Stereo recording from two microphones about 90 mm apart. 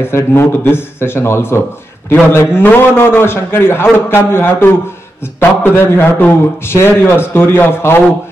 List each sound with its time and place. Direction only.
0.0 s a man's voice: 30° left (ahead or behind)